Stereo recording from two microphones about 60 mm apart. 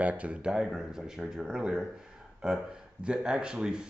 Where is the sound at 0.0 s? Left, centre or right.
Right.